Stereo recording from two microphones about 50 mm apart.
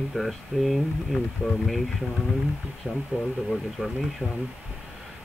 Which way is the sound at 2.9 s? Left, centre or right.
Left.